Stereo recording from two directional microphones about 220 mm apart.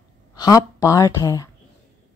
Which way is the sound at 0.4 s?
15° left (ahead or behind).